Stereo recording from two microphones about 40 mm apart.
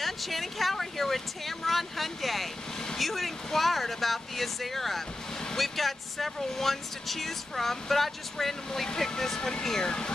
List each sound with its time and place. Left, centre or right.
0.0 s speech: centre